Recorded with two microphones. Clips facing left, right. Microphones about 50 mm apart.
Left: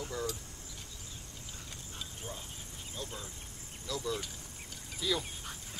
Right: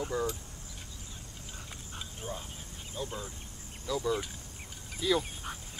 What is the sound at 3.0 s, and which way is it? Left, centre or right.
Speech, centre.